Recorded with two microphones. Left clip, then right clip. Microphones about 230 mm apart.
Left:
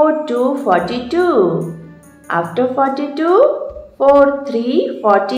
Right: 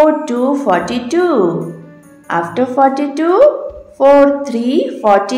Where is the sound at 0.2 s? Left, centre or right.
Right.